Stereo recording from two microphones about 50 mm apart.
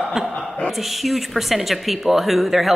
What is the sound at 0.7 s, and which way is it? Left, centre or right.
A woman's voice, centre.